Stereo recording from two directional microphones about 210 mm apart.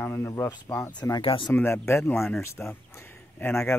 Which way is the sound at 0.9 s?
20° left (ahead or behind).